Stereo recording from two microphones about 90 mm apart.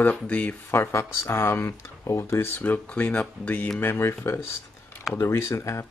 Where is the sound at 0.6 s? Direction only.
30° left (ahead or behind).